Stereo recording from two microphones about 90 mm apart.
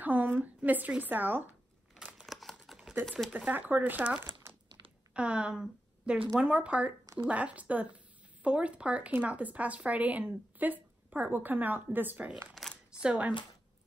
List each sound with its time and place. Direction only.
0.0 s a sound: 20° right (ahead or behind)
0.4 s a woman's voice: 20° right (ahead or behind)
2.0 s scissors: 10° right (ahead or behind)
2.2 s computer keyboard: centre (ahead or behind)
2.5 s a sound: 5° right (ahead or behind)
3.1 s speech: 5° left (ahead or behind)
3.3 s a woman's voice: 15° right (ahead or behind)
12.6 s a sound: 5° left (ahead or behind)
13.0 s speech: 10° right (ahead or behind)